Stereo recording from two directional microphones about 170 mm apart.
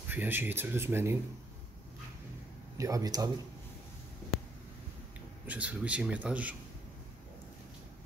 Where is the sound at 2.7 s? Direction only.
20° right (ahead or behind).